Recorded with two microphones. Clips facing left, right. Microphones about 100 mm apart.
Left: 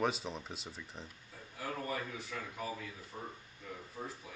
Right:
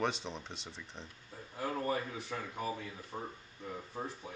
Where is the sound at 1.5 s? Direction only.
35° right (ahead or behind).